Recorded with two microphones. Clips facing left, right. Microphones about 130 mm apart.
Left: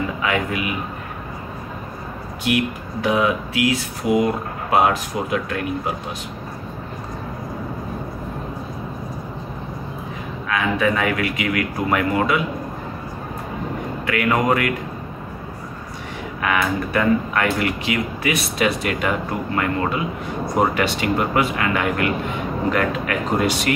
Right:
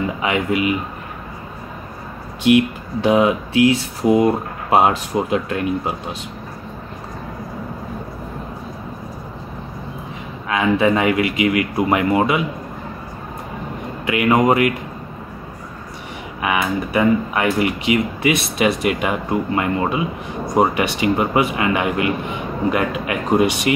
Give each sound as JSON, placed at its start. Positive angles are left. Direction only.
{"t": 0.2, "sound": "speech", "side_deg": -20}
{"t": 2.4, "sound": "speech", "side_deg": -25}
{"t": 10.5, "sound": "speech", "side_deg": -25}
{"t": 14.0, "sound": "speech", "side_deg": -20}
{"t": 16.3, "sound": "speech", "side_deg": -15}